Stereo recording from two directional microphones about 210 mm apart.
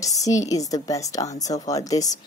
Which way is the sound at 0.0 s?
15° left (ahead or behind).